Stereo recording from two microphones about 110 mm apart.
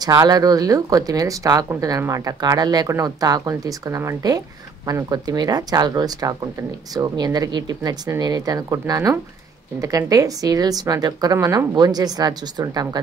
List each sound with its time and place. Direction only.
0.0 s speech: 35° right (ahead or behind)